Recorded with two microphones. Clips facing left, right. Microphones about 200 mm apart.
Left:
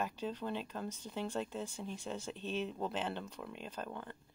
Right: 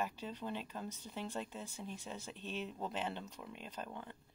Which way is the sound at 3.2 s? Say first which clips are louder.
Left 4 dB; 60° left (ahead or behind).